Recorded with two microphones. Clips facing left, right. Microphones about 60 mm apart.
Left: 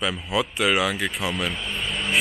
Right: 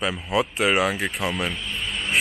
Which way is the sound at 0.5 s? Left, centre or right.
Centre.